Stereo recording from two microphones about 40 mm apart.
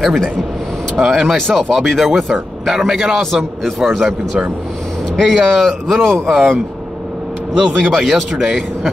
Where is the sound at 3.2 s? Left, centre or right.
Centre.